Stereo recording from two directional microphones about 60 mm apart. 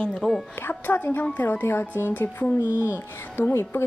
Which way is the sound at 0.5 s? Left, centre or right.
Left.